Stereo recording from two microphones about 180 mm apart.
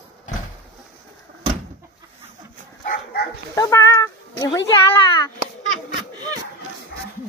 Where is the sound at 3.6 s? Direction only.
15° left (ahead or behind).